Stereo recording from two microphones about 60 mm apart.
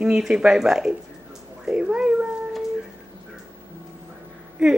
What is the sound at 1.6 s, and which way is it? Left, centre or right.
Cat, centre.